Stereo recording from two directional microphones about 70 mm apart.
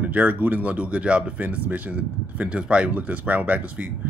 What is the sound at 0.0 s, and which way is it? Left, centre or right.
Speech, right.